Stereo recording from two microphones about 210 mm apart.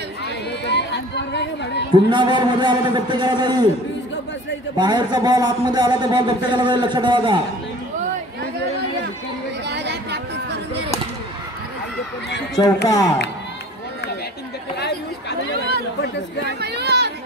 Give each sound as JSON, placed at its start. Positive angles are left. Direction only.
{"t": 0.7, "sound": "speech", "side_deg": 55}
{"t": 2.0, "sound": "a man's voice", "side_deg": -20}
{"t": 4.7, "sound": "a man's voice", "side_deg": -20}
{"t": 9.7, "sound": "chatter", "side_deg": -55}
{"t": 12.8, "sound": "speech", "side_deg": 15}
{"t": 14.8, "sound": "chatter", "side_deg": 50}
{"t": 16.4, "sound": "a sound", "side_deg": -50}